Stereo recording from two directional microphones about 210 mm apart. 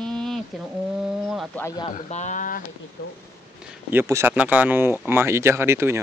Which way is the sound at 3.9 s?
10° right (ahead or behind).